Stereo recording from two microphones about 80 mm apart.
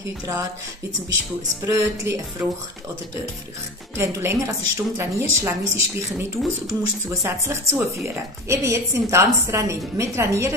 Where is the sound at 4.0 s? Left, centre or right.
Right.